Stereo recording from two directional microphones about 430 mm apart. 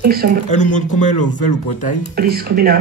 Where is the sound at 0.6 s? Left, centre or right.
Left.